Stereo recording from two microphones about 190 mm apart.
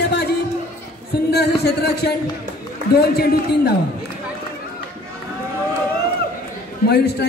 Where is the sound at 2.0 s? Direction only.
55° left (ahead or behind).